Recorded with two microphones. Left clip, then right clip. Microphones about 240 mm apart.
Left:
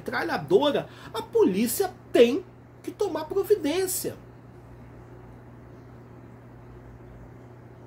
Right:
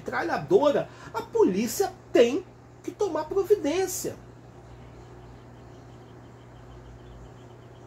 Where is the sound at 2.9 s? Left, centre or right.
Centre.